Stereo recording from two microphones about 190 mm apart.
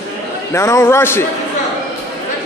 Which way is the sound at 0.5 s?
15° left (ahead or behind).